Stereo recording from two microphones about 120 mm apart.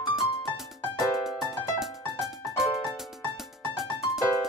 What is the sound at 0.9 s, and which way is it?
Music, 5° right (ahead or behind).